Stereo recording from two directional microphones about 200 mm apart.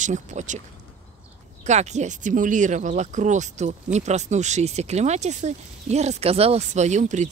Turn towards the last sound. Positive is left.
turn(degrees=-35)  # may be behind; listen again after turning